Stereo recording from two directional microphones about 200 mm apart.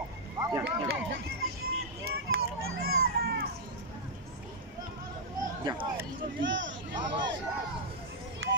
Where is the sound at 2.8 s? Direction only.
50° right (ahead or behind).